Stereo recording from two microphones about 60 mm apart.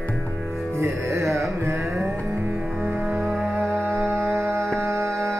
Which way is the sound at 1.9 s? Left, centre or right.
Right.